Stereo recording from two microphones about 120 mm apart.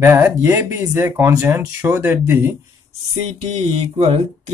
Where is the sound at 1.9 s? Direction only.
15° right (ahead or behind).